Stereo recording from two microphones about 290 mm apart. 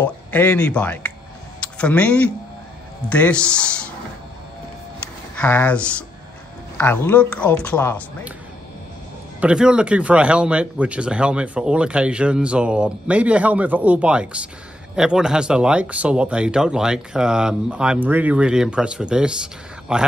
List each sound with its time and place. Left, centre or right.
0.0 s speech: centre
5.3 s speech: centre
9.4 s speech: centre